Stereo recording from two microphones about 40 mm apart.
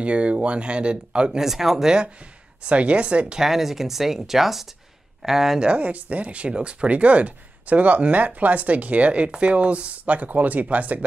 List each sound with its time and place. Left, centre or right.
0.0 s speech: right
1.4 s speech: centre
2.6 s speech: right
3.3 s speech: centre
5.6 s speech: right